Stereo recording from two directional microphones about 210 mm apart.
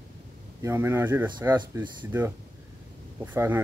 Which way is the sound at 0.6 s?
15° right (ahead or behind).